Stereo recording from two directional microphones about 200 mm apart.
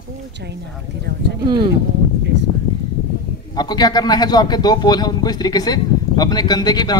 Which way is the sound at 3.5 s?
20° left (ahead or behind).